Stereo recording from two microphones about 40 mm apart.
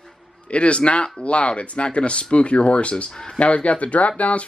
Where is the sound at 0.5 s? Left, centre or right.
Left.